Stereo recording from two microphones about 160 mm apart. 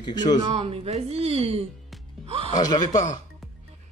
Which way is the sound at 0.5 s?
35° right (ahead or behind).